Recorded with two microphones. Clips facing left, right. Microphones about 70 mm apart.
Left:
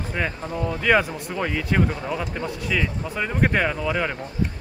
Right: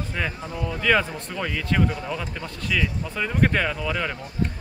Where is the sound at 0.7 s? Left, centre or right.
Centre.